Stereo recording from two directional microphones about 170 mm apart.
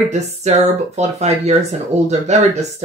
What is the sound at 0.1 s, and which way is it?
Speech, 40° right (ahead or behind).